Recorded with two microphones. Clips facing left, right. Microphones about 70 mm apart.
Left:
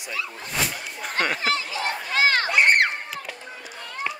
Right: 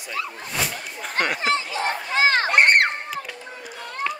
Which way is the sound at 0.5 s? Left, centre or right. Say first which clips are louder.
Even; centre.